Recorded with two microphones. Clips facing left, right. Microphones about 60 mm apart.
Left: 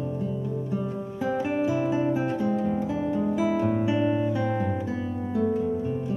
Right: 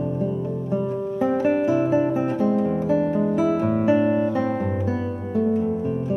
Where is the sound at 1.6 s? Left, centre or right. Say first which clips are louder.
Right 5 dB; right.